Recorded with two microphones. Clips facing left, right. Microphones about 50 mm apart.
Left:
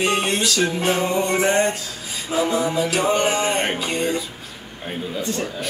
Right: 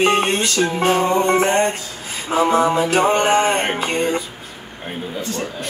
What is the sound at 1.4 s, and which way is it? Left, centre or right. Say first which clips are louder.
Speech: right 1 dB; centre.